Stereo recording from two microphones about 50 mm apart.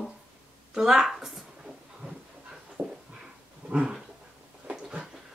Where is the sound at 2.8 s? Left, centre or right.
Right.